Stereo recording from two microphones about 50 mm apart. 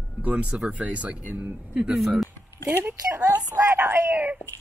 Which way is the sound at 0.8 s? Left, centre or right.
Right.